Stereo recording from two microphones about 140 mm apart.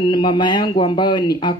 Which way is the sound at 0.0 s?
35° left (ahead or behind).